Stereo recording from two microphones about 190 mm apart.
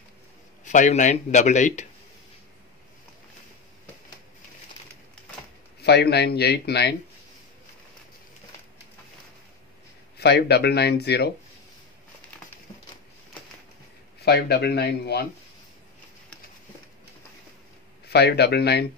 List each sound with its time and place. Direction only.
0.7 s speech: 40° left (ahead or behind)
5.8 s speech: 60° left (ahead or behind)
10.1 s speech: 60° left (ahead or behind)
14.2 s speech: 60° left (ahead or behind)
18.0 s speech: 60° left (ahead or behind)